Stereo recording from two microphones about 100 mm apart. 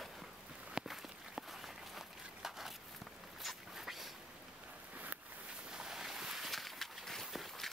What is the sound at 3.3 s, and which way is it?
Dog, centre (ahead or behind).